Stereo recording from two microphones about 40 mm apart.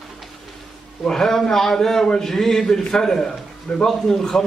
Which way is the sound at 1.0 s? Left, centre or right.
Centre.